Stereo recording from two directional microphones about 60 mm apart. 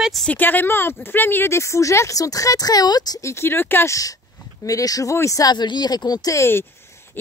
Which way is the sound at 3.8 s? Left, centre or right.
Left.